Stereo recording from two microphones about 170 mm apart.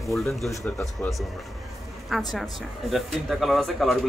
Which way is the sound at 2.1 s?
Centre (ahead or behind).